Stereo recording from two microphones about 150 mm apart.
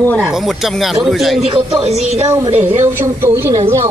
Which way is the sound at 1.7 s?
45° right (ahead or behind).